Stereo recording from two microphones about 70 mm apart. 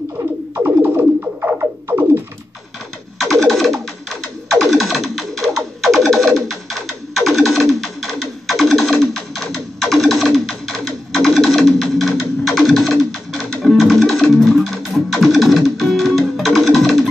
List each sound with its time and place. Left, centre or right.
0.7 s music: right
3.2 s music: centre